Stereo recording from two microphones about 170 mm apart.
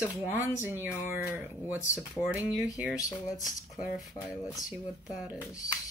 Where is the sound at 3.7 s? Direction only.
Centre (ahead or behind).